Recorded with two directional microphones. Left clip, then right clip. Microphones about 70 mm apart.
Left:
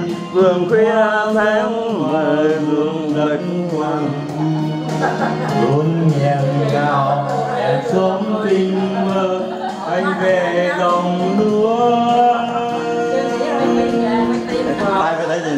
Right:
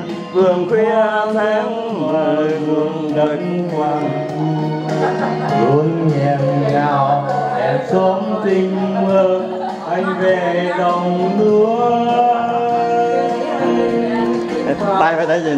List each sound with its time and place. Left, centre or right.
0.4 s music: centre
0.9 s chant: centre